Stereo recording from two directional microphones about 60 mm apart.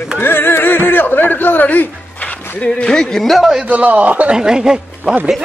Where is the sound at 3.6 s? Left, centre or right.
Right.